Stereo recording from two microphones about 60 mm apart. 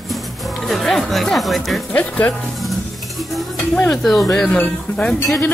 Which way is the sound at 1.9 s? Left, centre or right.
Left.